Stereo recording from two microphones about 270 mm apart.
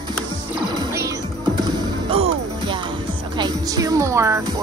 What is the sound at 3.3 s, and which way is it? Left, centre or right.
Speech, centre.